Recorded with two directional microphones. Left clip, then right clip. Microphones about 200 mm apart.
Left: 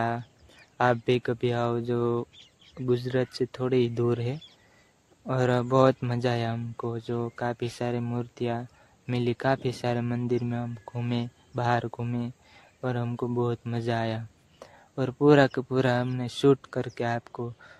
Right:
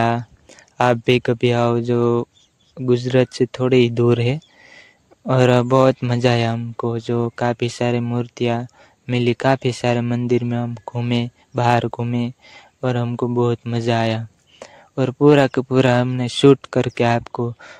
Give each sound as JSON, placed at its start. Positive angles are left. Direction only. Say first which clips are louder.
{"t": 0.0, "sound": "speech", "louder": "right 10 dB", "side_deg": -40}